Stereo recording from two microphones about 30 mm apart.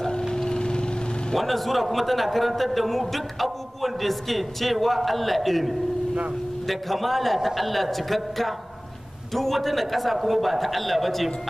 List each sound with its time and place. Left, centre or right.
0.5 s vehicle: left
1.3 s a man's voice: centre